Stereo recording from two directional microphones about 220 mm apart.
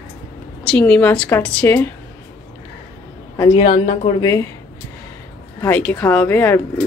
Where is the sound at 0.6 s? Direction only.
5° left (ahead or behind).